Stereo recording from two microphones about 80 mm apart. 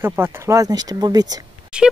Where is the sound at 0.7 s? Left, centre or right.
Right.